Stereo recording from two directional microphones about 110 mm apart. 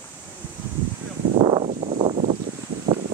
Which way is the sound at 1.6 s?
90° right.